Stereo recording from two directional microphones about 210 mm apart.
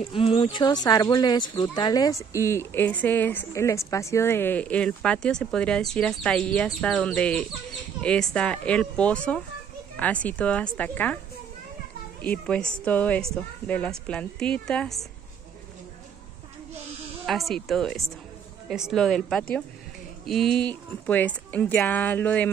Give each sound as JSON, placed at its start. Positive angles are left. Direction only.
{"t": 0.0, "sound": "speech", "side_deg": 25}
{"t": 12.2, "sound": "speech", "side_deg": 5}
{"t": 17.3, "sound": "speech", "side_deg": 0}